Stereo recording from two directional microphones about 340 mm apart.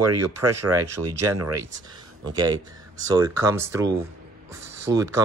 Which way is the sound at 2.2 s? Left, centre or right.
Centre.